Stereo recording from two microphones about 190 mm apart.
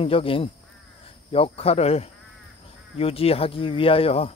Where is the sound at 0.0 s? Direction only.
30° left (ahead or behind).